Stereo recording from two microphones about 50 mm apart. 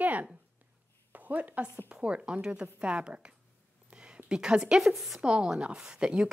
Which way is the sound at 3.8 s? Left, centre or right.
Centre.